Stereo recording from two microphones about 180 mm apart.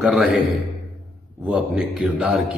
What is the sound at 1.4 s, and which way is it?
A man's voice, 5° right (ahead or behind).